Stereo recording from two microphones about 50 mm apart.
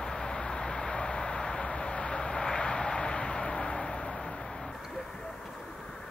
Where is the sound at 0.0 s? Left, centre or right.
Centre.